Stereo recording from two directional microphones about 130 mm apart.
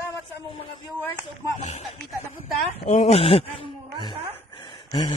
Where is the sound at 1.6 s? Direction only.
60° left (ahead or behind).